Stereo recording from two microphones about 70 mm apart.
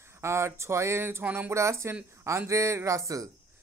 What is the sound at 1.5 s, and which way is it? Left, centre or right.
Speech, right.